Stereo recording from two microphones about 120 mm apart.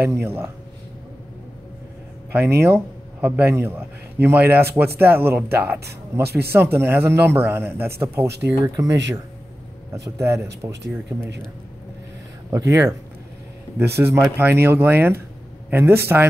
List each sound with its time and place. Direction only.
0.0 s speech: 20° right (ahead or behind)
2.3 s speech: 15° right (ahead or behind)
12.4 s speech: 25° right (ahead or behind)